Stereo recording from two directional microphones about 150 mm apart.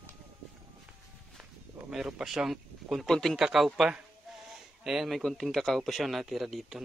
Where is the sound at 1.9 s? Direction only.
5° right (ahead or behind).